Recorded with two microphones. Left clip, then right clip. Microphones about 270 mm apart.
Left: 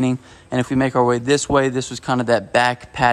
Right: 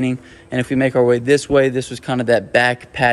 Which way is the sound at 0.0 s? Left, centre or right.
Centre.